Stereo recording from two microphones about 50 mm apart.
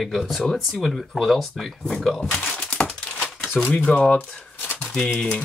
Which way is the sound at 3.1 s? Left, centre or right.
Left.